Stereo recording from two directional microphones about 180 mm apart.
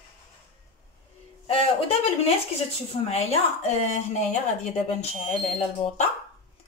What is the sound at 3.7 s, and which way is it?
Speech, 40° left (ahead or behind).